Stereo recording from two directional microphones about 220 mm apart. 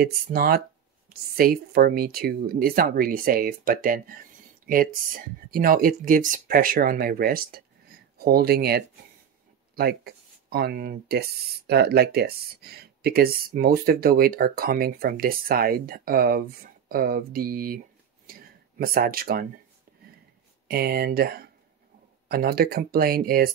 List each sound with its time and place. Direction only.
0.0 s speech: 40° right (ahead or behind)
18.2 s a sound: 40° right (ahead or behind)
20.6 s speech: 45° right (ahead or behind)